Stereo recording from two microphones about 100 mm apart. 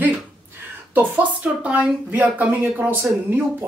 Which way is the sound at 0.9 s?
15° right (ahead or behind).